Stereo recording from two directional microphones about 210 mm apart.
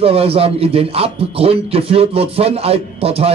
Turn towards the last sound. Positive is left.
turn(degrees=-30)  # may be behind; listen again after turning